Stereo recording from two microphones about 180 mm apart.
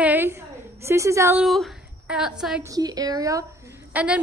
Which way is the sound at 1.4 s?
Centre (ahead or behind).